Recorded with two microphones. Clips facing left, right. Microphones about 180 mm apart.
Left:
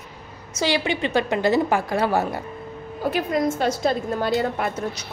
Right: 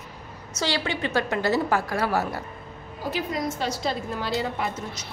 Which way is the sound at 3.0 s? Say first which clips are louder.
Left 6 dB; 55° left (ahead or behind).